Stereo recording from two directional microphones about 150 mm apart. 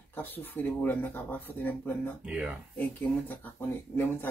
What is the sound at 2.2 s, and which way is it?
Speech, 10° right (ahead or behind).